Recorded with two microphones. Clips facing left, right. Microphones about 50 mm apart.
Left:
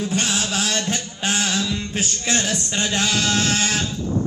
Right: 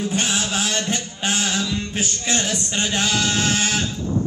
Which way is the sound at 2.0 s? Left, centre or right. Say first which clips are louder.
Even; right.